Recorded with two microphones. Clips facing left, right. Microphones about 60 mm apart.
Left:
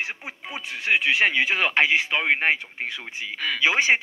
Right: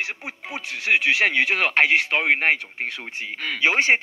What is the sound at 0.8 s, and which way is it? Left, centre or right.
Speech, right.